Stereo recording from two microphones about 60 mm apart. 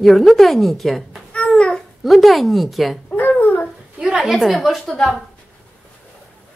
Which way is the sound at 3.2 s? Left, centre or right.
Left.